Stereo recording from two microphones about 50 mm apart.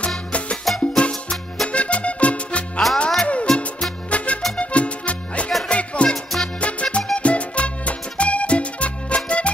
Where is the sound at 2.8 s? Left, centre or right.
Centre.